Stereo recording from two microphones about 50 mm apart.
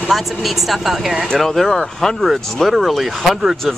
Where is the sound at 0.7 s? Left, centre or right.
Centre.